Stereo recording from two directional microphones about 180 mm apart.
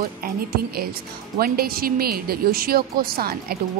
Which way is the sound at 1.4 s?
55° right (ahead or behind).